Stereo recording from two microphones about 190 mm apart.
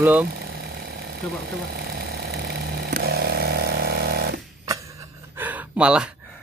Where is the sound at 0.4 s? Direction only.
55° right (ahead or behind).